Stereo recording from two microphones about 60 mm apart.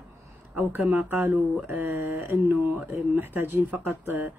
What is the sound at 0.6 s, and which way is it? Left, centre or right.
Speech, right.